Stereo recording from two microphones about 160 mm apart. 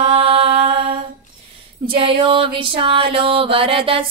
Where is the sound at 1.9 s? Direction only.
30° right (ahead or behind).